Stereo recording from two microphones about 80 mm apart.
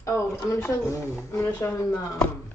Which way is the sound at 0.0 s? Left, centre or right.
Left.